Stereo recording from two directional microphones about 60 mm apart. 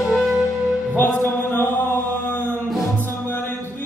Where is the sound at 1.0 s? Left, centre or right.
Left.